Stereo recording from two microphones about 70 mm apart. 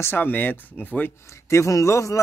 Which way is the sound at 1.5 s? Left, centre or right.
Left.